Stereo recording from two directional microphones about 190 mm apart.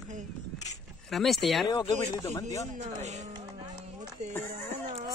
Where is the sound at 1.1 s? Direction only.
Centre (ahead or behind).